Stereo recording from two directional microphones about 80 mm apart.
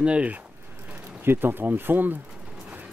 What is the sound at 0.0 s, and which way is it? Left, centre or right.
Speech, centre.